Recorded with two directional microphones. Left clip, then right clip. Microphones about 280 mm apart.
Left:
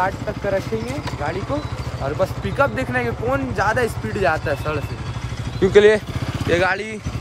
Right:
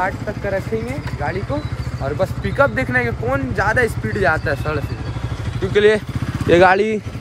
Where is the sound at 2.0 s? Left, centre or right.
Centre.